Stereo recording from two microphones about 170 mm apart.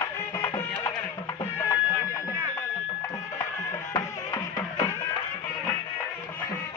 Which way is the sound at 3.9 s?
20° left (ahead or behind).